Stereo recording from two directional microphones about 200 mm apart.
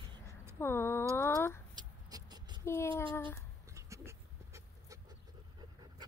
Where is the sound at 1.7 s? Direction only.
20° right (ahead or behind).